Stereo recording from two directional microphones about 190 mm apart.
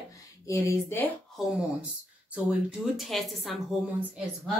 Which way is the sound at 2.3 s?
5° right (ahead or behind).